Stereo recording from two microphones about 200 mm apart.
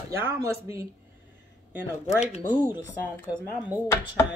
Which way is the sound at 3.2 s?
5° right (ahead or behind).